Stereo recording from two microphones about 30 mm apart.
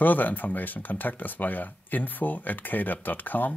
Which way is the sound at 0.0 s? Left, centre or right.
Left.